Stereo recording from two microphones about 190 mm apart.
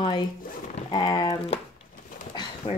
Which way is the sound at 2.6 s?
25° left (ahead or behind).